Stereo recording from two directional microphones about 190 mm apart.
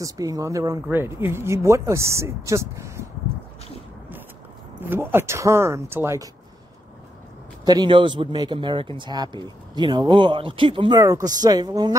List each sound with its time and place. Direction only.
0.0 s speech: 20° right (ahead or behind)
4.7 s speech: 10° right (ahead or behind)
7.6 s speech: 20° right (ahead or behind)